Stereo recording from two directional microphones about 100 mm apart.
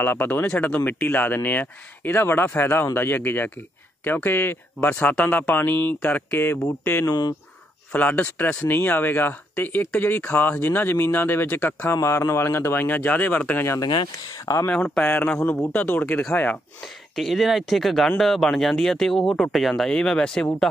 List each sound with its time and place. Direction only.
0.0 s speech: 20° left (ahead or behind)
7.1 s speech: 40° left (ahead or behind)
7.9 s speech: 15° left (ahead or behind)
13.7 s speech: 45° left (ahead or behind)
14.4 s speech: 35° left (ahead or behind)
14.7 s speech: 10° left (ahead or behind)
16.8 s speech: centre (ahead or behind)